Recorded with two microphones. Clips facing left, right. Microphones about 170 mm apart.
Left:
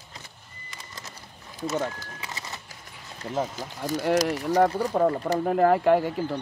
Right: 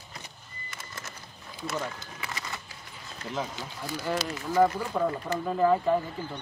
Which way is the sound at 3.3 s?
40° left (ahead or behind).